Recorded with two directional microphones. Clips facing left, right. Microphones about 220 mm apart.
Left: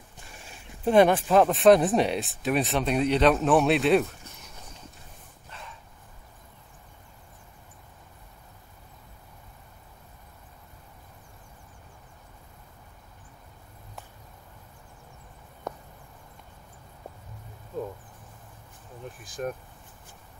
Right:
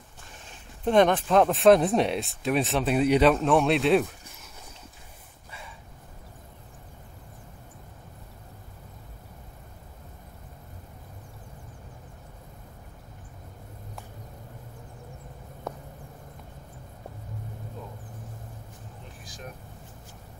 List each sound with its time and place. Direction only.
0.5 s speech: 10° left (ahead or behind)
15.7 s a sound: centre (ahead or behind)
19.2 s vehicle: 50° left (ahead or behind)